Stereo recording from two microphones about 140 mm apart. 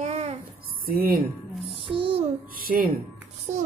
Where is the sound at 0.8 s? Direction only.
90° right.